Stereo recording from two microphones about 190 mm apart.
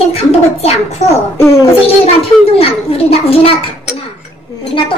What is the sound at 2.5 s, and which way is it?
A woman's voice, 30° left (ahead or behind).